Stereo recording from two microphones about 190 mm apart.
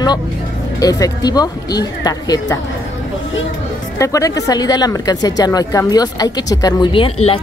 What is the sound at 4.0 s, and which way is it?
Speech, 15° left (ahead or behind).